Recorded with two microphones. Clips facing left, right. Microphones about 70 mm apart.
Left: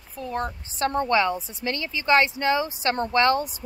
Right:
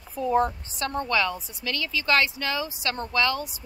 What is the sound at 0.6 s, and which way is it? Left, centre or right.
A woman's voice, left.